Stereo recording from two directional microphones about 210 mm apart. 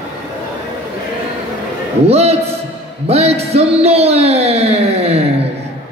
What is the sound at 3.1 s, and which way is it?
Music, 30° right (ahead or behind).